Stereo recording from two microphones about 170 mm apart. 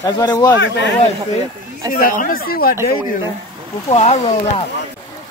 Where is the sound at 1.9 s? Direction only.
55° left (ahead or behind).